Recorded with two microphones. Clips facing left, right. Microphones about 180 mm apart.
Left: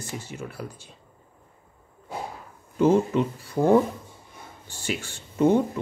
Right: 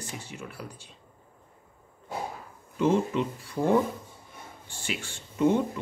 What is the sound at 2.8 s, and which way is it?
Speech, 40° left (ahead or behind).